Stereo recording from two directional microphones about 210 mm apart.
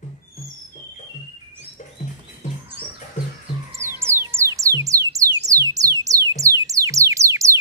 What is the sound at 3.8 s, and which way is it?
Music, 10° right (ahead or behind).